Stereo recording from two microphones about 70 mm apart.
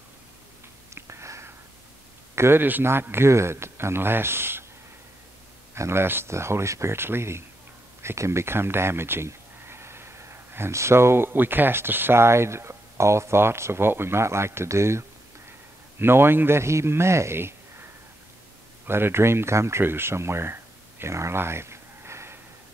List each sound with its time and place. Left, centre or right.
0.9 s whispering: right
2.3 s speech: right
5.8 s speech: right
18.9 s speech: right